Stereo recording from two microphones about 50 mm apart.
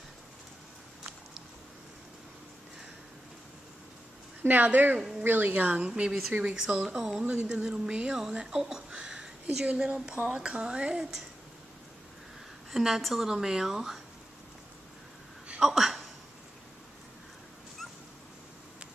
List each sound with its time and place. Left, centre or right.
4.4 s speech: right
5.9 s speech: centre
8.9 s a sound: centre
9.7 s a woman's voice: right
12.7 s a woman's voice: centre
15.6 s speech: centre